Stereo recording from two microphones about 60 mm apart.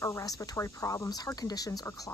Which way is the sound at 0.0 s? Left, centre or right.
Left.